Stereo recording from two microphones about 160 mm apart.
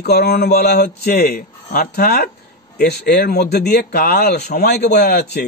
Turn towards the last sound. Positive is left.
turn(degrees=80)